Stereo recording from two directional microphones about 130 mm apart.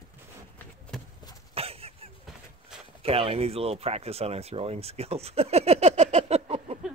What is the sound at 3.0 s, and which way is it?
Speech, 50° right (ahead or behind).